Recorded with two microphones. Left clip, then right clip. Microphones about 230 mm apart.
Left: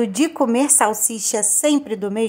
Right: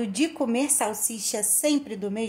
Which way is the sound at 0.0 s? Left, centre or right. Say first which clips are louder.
Left 8 dB; centre.